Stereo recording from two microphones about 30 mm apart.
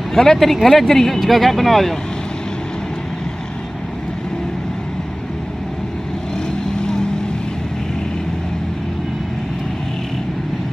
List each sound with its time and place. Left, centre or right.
0.1 s speech: centre
6.7 s vehicle: left